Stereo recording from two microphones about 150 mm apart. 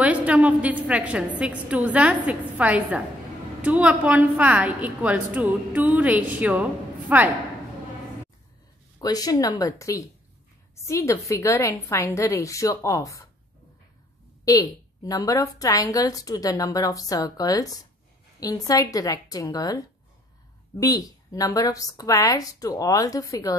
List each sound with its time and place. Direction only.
0.0 s a woman's voice: 10° right (ahead or behind)
9.0 s a woman's voice: 25° left (ahead or behind)
14.4 s a woman's voice: 25° left (ahead or behind)